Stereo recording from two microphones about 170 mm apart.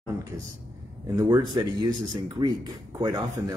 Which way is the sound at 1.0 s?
20° right (ahead or behind).